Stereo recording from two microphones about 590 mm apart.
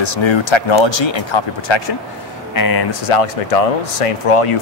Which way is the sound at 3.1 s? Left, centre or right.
Left.